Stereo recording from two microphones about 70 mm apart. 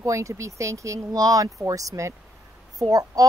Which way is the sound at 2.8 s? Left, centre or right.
Right.